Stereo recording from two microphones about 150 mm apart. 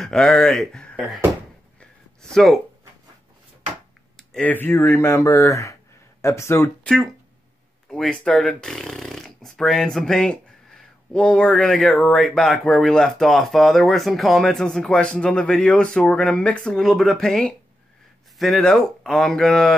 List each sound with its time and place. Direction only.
0.0 s speech: 5° left (ahead or behind)
1.8 s a sound: 5° left (ahead or behind)
4.2 s speech: 5° left (ahead or behind)
7.9 s speech: 5° left (ahead or behind)